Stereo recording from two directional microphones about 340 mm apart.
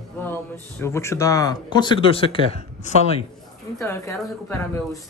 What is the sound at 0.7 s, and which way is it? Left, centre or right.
Speech, centre.